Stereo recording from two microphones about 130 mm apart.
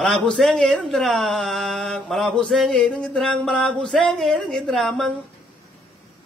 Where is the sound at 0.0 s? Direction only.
5° left (ahead or behind).